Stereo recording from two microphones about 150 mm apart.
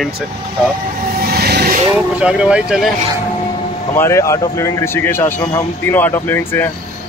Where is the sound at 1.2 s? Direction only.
90° right.